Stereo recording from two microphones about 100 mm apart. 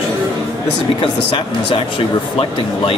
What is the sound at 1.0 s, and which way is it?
A man's voice, 55° left (ahead or behind).